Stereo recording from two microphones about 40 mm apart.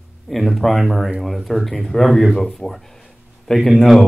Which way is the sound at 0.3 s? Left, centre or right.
Centre.